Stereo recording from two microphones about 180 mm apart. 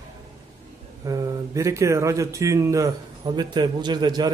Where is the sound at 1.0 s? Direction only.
20° right (ahead or behind).